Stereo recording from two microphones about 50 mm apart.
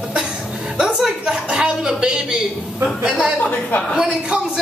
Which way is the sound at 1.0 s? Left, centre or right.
Centre.